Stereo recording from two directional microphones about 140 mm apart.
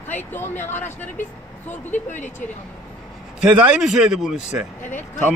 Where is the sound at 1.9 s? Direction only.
60° left (ahead or behind).